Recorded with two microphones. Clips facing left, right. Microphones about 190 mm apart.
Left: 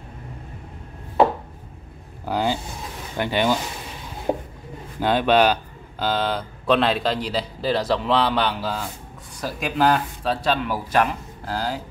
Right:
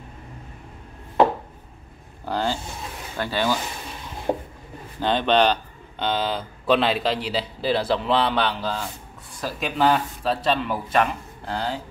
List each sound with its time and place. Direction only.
2.2 s speech: 15° left (ahead or behind)
4.3 s speech: 5° left (ahead or behind)